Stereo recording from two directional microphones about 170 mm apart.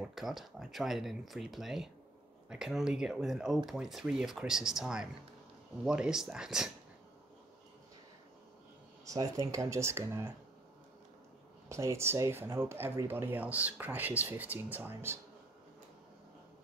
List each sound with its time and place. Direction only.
0.0 s speech: centre (ahead or behind)
9.0 s speech: 20° right (ahead or behind)
11.7 s speech: 15° right (ahead or behind)